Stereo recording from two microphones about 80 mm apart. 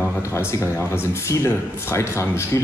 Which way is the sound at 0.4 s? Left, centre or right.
Left.